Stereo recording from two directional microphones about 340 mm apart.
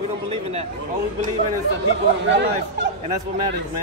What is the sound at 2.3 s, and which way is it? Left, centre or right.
Speech, right.